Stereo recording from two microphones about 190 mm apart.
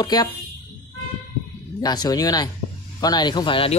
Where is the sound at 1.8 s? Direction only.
20° left (ahead or behind).